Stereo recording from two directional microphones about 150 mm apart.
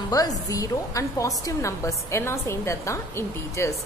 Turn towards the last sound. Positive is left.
turn(degrees=20)  # may be behind; listen again after turning